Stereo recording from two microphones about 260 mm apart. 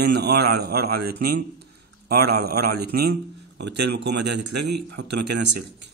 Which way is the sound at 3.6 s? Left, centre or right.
Right.